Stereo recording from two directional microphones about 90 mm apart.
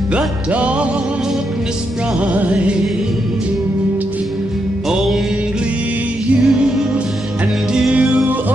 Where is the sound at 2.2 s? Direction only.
15° right (ahead or behind).